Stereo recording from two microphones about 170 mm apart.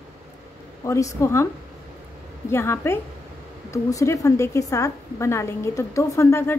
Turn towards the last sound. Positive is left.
turn(degrees=15)  # may be behind; listen again after turning